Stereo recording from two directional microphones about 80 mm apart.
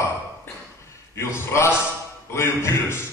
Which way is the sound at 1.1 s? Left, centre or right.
Left.